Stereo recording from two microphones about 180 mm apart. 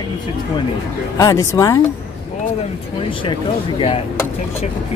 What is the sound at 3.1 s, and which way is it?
Speech, 30° left (ahead or behind).